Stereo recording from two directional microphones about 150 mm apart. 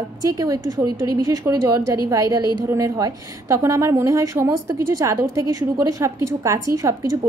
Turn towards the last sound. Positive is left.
turn(degrees=-20)  # may be behind; listen again after turning